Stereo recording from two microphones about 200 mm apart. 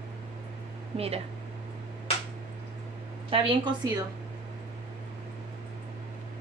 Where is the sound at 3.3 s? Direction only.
25° right (ahead or behind).